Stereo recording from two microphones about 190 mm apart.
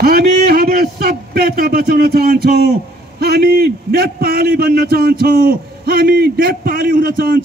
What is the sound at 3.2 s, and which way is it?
A man's voice, 55° right (ahead or behind).